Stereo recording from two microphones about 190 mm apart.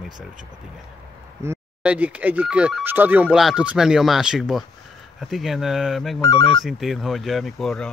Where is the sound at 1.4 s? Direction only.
10° right (ahead or behind).